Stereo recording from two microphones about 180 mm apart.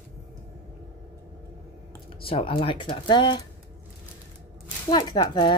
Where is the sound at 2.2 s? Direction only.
30° left (ahead or behind).